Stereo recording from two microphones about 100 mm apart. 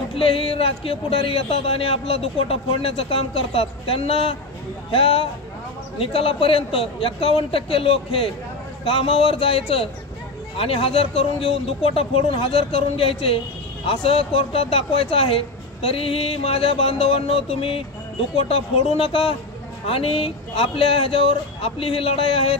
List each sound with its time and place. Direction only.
0.1 s speech: 65° left (ahead or behind)